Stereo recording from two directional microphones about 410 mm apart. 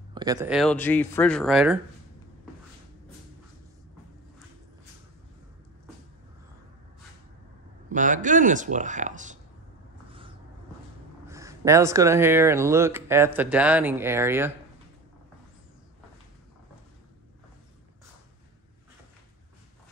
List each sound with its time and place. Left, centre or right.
0.1 s speech: centre
7.9 s speech: centre
11.2 s speech: centre